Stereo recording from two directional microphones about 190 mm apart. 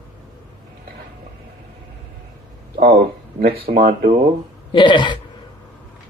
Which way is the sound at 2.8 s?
60° right (ahead or behind).